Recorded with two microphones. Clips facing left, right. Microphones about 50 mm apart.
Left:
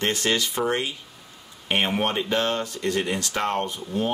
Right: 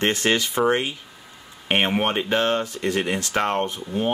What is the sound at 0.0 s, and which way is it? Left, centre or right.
Speech, right.